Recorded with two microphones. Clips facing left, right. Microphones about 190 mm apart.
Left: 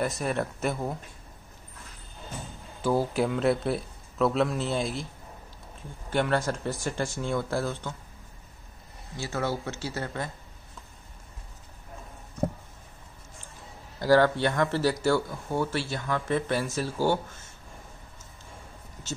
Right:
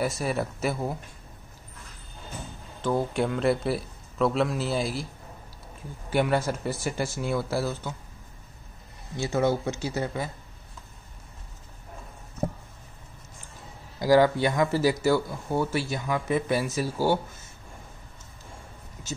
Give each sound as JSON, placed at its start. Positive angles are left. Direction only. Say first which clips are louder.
{"t": 0.0, "sound": "a man's voice", "louder": "right 1 dB", "side_deg": -5}
{"t": 2.8, "sound": "a man's voice", "louder": "left 1 dB", "side_deg": 5}
{"t": 6.0, "sound": "speech", "louder": "right 2 dB", "side_deg": -10}
{"t": 9.1, "sound": "speech", "louder": "right 6 dB", "side_deg": -20}
{"t": 13.9, "sound": "speech", "louder": "right 1 dB", "side_deg": -10}